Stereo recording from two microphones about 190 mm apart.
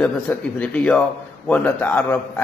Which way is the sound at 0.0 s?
5° left (ahead or behind).